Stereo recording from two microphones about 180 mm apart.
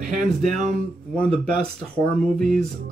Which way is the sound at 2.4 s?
5° left (ahead or behind).